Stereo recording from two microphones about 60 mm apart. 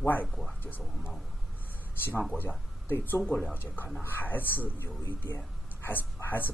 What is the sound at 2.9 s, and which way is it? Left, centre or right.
Speech, left.